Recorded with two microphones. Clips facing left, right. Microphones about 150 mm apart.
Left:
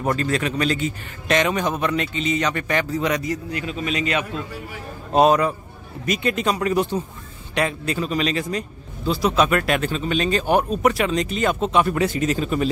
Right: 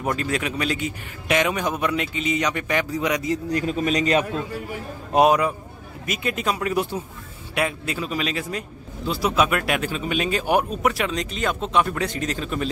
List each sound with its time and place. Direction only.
0.0 s a man's voice: 10° right (ahead or behind)
3.5 s a man's voice: 40° right (ahead or behind)
5.1 s a man's voice: 10° right (ahead or behind)